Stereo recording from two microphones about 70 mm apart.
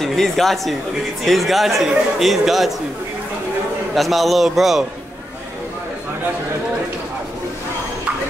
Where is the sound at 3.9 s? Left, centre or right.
Centre.